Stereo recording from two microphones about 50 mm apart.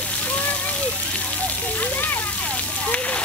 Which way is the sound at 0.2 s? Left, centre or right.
Left.